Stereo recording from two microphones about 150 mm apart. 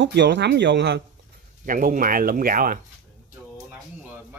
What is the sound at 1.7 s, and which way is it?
Speech, 65° right (ahead or behind).